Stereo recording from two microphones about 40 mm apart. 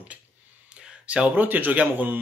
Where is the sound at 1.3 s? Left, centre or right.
Right.